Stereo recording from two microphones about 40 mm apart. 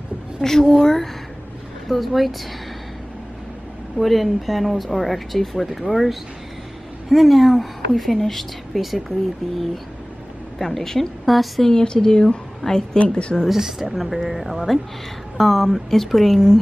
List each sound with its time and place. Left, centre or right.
0.4 s a woman's voice: centre
4.0 s speech: centre
7.9 s speech: centre
10.6 s speech: centre
11.6 s a woman's voice: centre
12.9 s a woman's voice: left
13.5 s speech: centre